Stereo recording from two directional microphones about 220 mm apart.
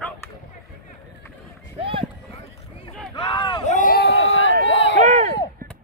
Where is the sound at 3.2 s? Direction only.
20° left (ahead or behind).